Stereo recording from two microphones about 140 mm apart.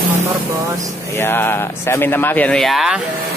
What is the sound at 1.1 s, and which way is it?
Speech, 15° left (ahead or behind).